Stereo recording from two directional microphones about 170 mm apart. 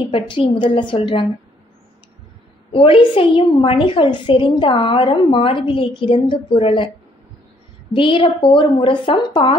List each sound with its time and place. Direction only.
0.0 s a woman's voice: 35° left (ahead or behind)
2.7 s a woman's voice: 30° left (ahead or behind)
7.9 s a woman's voice: 30° left (ahead or behind)